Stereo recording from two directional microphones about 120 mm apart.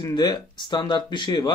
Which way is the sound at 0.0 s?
35° left (ahead or behind).